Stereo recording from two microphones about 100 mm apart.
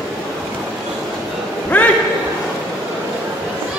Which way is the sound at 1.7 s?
15° left (ahead or behind).